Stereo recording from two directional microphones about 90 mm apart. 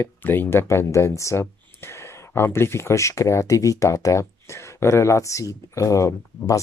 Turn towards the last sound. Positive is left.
turn(degrees=35)  # may be behind; listen again after turning